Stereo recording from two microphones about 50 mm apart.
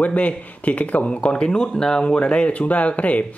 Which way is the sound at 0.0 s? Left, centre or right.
Left.